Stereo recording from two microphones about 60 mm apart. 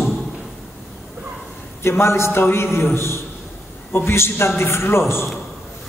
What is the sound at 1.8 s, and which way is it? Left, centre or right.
A man's voice, left.